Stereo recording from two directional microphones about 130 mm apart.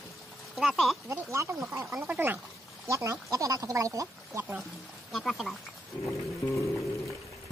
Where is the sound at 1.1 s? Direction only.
20° right (ahead or behind).